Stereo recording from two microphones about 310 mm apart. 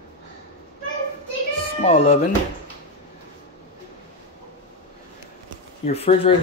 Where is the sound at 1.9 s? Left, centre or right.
Centre.